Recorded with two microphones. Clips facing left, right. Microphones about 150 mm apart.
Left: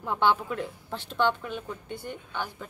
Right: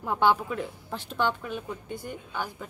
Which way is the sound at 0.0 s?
10° right (ahead or behind).